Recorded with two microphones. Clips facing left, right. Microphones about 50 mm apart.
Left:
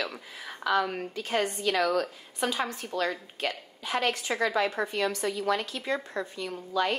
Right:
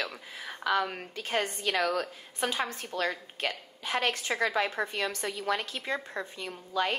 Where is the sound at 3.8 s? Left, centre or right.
Right.